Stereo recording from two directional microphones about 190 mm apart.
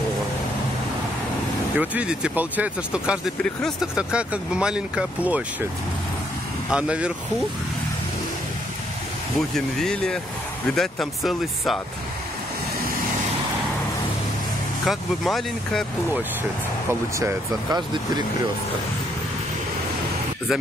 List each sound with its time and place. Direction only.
1.8 s speech: 5° right (ahead or behind)
6.7 s speech: 5° right (ahead or behind)
9.8 s speech: 5° left (ahead or behind)
14.9 s speech: centre (ahead or behind)
17.2 s speech: 20° right (ahead or behind)